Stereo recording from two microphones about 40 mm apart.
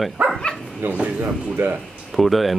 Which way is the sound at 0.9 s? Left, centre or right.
Right.